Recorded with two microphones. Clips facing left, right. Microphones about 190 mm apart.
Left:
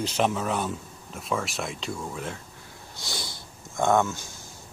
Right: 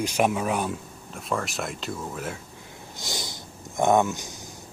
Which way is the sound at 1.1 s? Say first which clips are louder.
Even; centre (ahead or behind).